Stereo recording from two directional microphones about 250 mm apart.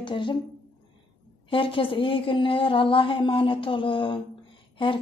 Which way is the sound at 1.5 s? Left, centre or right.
Left.